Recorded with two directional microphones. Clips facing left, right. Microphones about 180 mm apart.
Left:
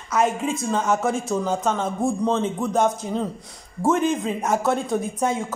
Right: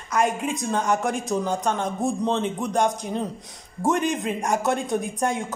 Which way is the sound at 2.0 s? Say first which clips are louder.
Left 2 dB; 20° right (ahead or behind).